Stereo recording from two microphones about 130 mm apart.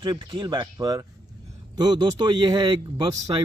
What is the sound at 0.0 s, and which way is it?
A man's voice, 35° right (ahead or behind).